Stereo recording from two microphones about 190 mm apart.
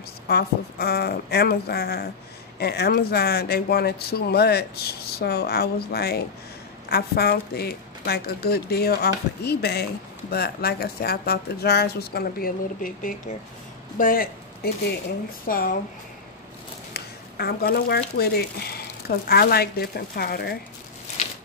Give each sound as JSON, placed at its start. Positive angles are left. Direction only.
{"t": 0.3, "sound": "speech", "side_deg": 55}
{"t": 16.9, "sound": "speech", "side_deg": 55}